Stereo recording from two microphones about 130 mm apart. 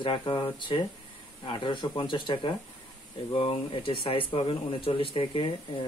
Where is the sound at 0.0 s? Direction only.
40° left (ahead or behind).